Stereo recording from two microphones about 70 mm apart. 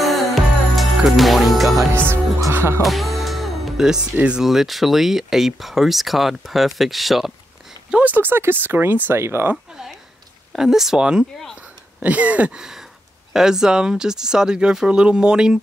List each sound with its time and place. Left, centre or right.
0.0 s music: centre
2.5 s music: right
2.8 s speech: centre
4.5 s speech: centre
7.9 s speech: right
9.2 s music: right
10.5 s speech: centre; by 12.5 s right
12.5 s a sound: centre
13.3 s speech: centre